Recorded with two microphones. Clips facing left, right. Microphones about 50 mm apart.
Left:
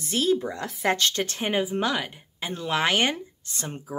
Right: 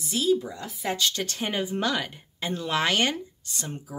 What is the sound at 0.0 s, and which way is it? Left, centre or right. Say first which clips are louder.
Speech: left 1 dB; left.